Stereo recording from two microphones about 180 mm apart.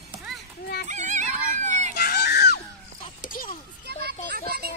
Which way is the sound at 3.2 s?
50° left (ahead or behind).